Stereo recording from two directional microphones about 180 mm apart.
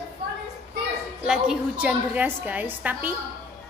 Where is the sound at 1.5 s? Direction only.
5° right (ahead or behind).